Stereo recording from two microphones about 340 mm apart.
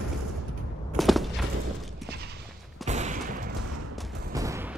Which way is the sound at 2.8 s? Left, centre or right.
Right.